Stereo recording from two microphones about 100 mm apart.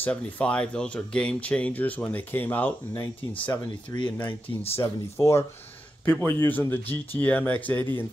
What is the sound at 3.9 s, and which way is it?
Speech, 30° left (ahead or behind).